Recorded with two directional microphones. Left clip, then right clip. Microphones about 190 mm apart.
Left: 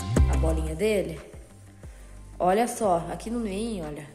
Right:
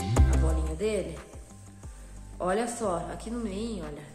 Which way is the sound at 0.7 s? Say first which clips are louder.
Left 5 dB; 35° left (ahead or behind).